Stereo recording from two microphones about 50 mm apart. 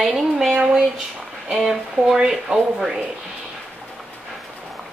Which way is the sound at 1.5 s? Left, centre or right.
Centre.